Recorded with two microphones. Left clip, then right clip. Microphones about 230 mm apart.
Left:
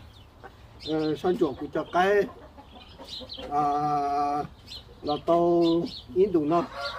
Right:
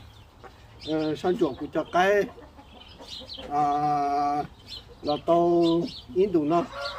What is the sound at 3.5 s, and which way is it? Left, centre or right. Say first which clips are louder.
Speech: right 1 dB; centre.